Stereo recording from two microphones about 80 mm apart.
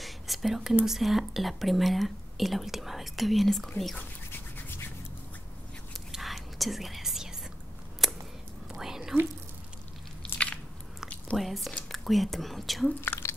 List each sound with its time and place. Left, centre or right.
0.0 s whispering: centre
0.8 s speech: centre
3.9 s a sound: left
5.9 s whispering: centre
8.0 s a sound: centre
8.6 s whispering: centre
10.3 s biting: centre
11.3 s speech: centre
13.0 s drip: left